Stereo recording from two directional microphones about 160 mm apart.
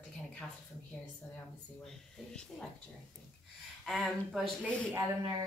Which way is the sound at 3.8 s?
Centre (ahead or behind).